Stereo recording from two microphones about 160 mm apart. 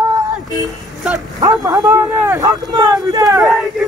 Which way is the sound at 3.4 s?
Centre (ahead or behind).